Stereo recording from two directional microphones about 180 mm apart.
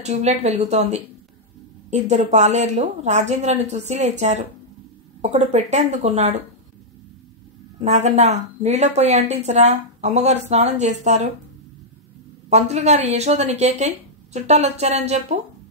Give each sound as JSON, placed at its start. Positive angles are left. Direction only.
{"t": 0.0, "sound": "a woman's voice", "side_deg": -40}
{"t": 7.8, "sound": "a woman's voice", "side_deg": -40}
{"t": 12.4, "sound": "a woman's voice", "side_deg": -35}